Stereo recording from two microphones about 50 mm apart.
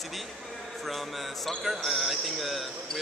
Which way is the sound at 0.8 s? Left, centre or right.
Centre.